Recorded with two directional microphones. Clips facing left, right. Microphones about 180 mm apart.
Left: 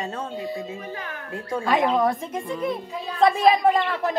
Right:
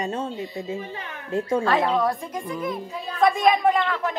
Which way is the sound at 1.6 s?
15° left (ahead or behind).